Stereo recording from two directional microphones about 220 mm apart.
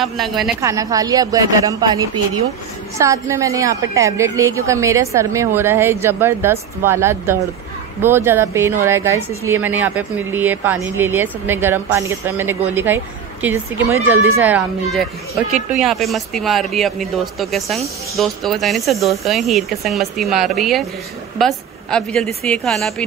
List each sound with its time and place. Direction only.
0.0 s speech: centre (ahead or behind)
0.6 s speech: 15° right (ahead or behind); by 23.0 s centre (ahead or behind)